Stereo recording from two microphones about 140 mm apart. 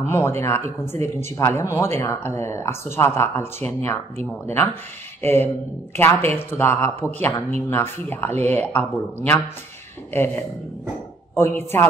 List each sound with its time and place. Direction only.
0.0 s speech: 15° left (ahead or behind)
5.2 s speech: 15° left (ahead or behind)